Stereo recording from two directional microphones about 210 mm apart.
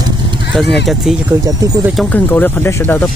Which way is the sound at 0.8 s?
Centre (ahead or behind).